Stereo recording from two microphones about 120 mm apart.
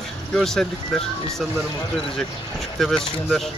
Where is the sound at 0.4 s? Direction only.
5° left (ahead or behind).